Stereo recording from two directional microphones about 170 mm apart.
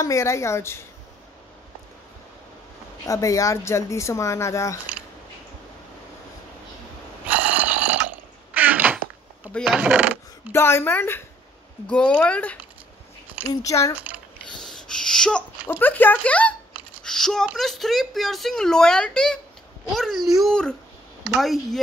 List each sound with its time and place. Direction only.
0.0 s speech: 15° left (ahead or behind)
3.1 s speech: 20° left (ahead or behind)
7.2 s a sound: 10° right (ahead or behind)
9.7 s coin: 5° right (ahead or behind)
10.5 s speech: 15° left (ahead or behind)
13.6 s speech: 20° left (ahead or behind)
14.5 s sneeze: 5° left (ahead or behind)
15.7 s a woman's voice: 10° left (ahead or behind)